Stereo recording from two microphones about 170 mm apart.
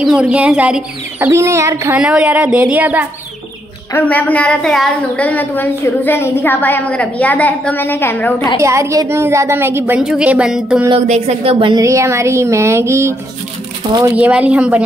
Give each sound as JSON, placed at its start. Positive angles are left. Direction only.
{"t": 0.0, "sound": "a woman's voice", "side_deg": -5}
{"t": 2.0, "sound": "a woman's voice", "side_deg": -5}
{"t": 3.9, "sound": "a woman's voice", "side_deg": 10}
{"t": 8.5, "sound": "a woman's voice", "side_deg": -15}
{"t": 11.1, "sound": "a woman's voice", "side_deg": -40}
{"t": 14.1, "sound": "a woman's voice", "side_deg": -10}